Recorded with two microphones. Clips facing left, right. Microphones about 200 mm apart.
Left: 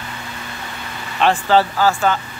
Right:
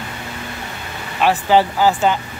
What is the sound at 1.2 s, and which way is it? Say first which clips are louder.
Speech: even; 10° right (ahead or behind).